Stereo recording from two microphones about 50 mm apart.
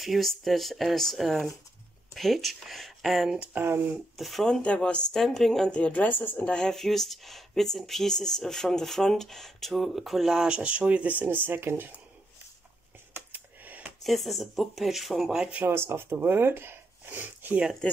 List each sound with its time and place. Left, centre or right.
0.0 s speech: centre
3.5 s speech: right
4.2 s speech: centre
4.5 s speech: left
5.1 s speech: centre
5.7 s a woman's voice: left
6.4 s speech: centre
6.7 s speech: centre
10.5 s speech: right
13.1 s computer keyboard: right
14.0 s speech: centre
15.6 s speech: right
17.2 s speech: right
17.8 s speech: centre